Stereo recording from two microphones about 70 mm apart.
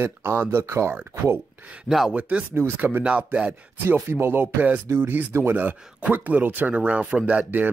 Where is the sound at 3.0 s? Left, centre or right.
Centre.